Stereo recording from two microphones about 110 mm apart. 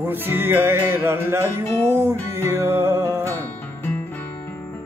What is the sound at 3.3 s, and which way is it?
Music, 15° left (ahead or behind).